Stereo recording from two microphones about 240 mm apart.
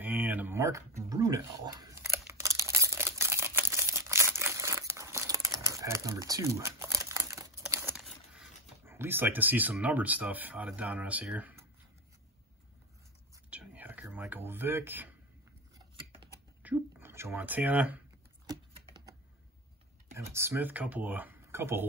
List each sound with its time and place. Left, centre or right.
0.0 s a sound: centre
8.0 s speech: centre
13.5 s whispering: centre
16.6 s speech: centre
18.5 s a sound: centre
20.2 s speech: centre